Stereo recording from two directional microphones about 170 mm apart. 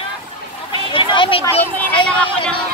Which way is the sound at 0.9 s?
30° left (ahead or behind).